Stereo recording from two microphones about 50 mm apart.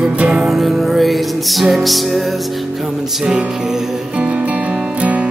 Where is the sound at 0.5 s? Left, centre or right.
Centre.